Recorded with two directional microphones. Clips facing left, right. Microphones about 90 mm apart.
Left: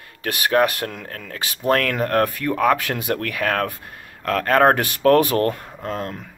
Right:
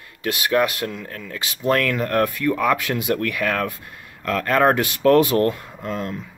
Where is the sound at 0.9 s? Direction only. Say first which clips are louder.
Right 1 dB; 55° left (ahead or behind).